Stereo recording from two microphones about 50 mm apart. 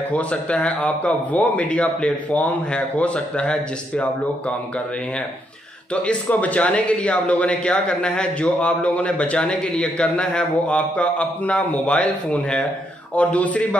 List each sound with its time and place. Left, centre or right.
0.1 s a man's voice: left
6.0 s a man's voice: left